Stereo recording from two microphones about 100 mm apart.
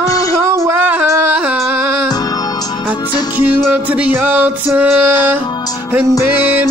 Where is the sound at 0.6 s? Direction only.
25° right (ahead or behind).